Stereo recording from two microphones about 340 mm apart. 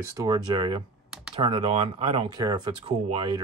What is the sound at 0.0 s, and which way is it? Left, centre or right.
Speech, centre.